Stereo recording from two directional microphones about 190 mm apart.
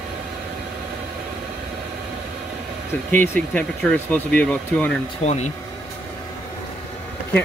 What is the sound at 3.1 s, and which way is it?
Speech, 10° left (ahead or behind).